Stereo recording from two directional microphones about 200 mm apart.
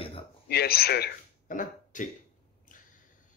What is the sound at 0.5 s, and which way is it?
Speech, 50° left (ahead or behind).